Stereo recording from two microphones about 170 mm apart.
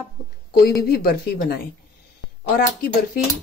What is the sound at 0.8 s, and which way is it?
Speech, 60° left (ahead or behind).